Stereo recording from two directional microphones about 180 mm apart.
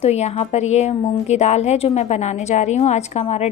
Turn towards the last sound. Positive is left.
turn(degrees=40)  # may be behind; listen again after turning